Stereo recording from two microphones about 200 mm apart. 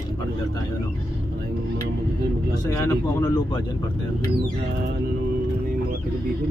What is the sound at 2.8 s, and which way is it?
Speech, 15° left (ahead or behind).